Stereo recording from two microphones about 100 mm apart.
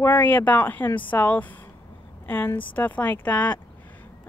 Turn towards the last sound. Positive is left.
turn(degrees=15)  # may be behind; listen again after turning